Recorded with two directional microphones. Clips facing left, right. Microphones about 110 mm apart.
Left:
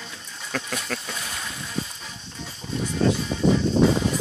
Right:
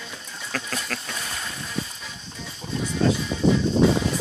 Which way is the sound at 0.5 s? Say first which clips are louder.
Left 1 dB; 5° left (ahead or behind).